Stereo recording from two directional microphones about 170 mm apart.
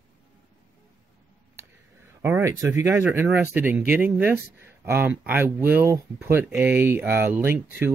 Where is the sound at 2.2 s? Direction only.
15° right (ahead or behind).